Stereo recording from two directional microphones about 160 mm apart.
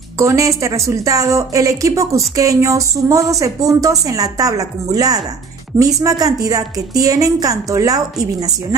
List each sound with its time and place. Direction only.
0.2 s a woman's voice: 20° right (ahead or behind)